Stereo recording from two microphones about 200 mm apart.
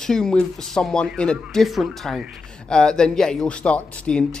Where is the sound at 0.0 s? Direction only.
5° left (ahead or behind).